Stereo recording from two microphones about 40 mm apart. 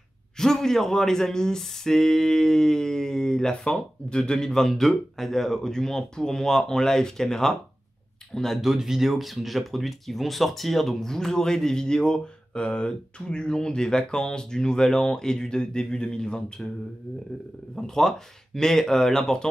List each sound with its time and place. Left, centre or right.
0.4 s speech: centre
4.5 s speech: centre
8.5 s speech: centre; by 16.6 s left
17.7 s speech: centre